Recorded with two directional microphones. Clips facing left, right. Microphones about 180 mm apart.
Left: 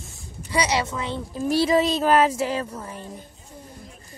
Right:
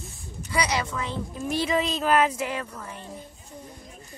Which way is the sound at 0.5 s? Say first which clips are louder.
Left 3 dB; 25° left (ahead or behind).